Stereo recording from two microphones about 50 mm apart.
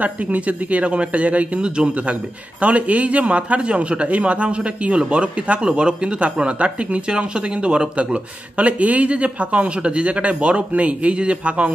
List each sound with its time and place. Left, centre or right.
0.0 s a man's voice: right